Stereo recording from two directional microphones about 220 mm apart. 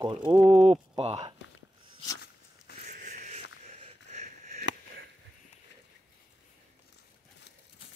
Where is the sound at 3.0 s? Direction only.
35° right (ahead or behind).